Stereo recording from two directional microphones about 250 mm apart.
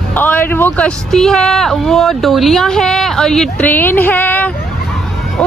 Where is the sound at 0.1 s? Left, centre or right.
Centre.